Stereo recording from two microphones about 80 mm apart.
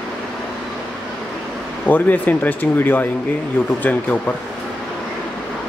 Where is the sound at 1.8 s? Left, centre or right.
Left.